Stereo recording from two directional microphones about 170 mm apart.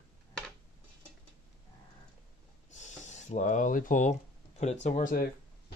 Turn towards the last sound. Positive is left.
turn(degrees=50)  # may be behind; listen again after turning